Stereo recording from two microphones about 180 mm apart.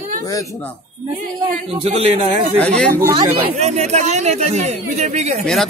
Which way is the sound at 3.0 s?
25° right (ahead or behind).